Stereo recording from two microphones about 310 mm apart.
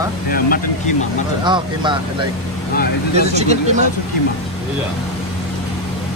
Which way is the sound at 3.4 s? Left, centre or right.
Right.